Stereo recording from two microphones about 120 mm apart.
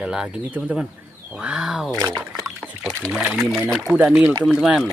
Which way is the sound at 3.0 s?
Centre (ahead or behind).